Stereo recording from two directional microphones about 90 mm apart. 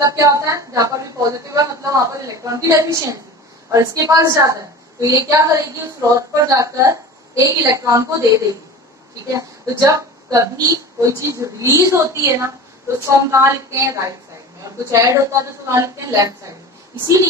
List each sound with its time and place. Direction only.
0.0 s a woman's voice: 40° right (ahead or behind)
9.3 s a woman's voice: 35° right (ahead or behind)